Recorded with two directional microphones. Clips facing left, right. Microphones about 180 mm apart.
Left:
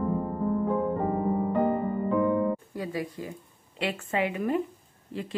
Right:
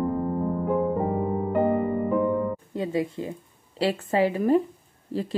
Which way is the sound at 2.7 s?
25° right (ahead or behind).